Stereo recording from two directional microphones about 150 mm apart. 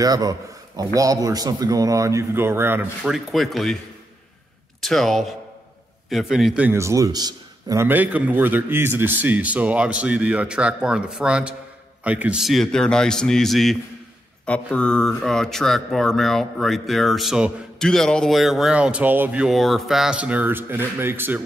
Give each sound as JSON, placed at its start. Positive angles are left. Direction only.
{"t": 0.0, "sound": "speech", "side_deg": -25}
{"t": 3.0, "sound": "speech", "side_deg": 0}
{"t": 4.8, "sound": "a man's voice", "side_deg": 0}
{"t": 7.8, "sound": "a man's voice", "side_deg": -10}